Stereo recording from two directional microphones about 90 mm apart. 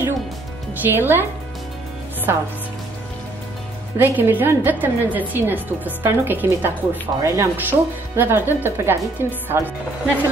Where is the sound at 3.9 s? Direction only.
20° right (ahead or behind).